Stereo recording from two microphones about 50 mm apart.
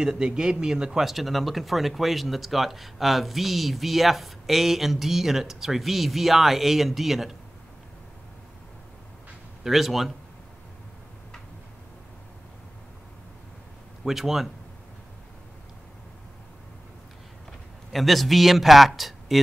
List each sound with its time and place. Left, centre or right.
0.0 s speech: centre
1.0 s speech: centre
9.6 s speech: centre
14.0 s speech: centre
17.5 s a man's voice: centre